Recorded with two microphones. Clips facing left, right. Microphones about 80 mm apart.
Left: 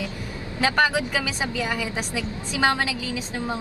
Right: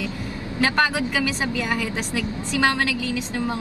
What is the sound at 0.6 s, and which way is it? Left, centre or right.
A woman's voice, centre.